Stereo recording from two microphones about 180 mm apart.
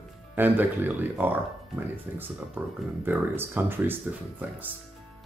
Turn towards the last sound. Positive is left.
turn(degrees=-10)  # may be behind; listen again after turning